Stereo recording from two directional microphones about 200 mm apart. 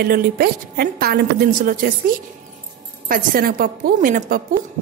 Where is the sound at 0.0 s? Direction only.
50° right (ahead or behind).